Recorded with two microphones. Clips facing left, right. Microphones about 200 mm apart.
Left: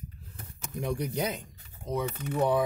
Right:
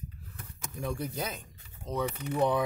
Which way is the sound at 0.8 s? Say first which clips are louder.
Left 4 dB; 20° left (ahead or behind).